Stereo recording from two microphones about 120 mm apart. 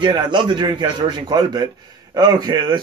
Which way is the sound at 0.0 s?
40° right (ahead or behind).